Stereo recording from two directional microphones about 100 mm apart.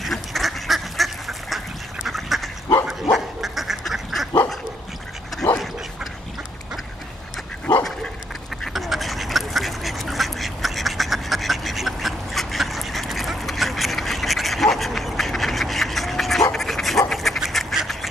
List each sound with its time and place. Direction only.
0.0 s duck: centre (ahead or behind)
8.7 s duck: centre (ahead or behind)
16.5 s dog: centre (ahead or behind)
17.1 s duck: centre (ahead or behind)